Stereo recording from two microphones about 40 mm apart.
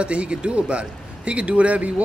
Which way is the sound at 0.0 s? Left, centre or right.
Right.